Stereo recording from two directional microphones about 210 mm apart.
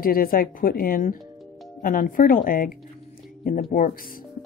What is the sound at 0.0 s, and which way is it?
Speech, 45° left (ahead or behind).